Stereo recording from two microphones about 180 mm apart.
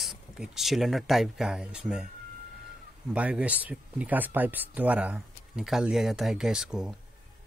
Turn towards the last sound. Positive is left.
turn(degrees=-5)  # may be behind; listen again after turning